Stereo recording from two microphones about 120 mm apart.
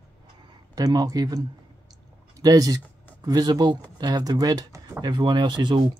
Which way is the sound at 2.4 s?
30° right (ahead or behind).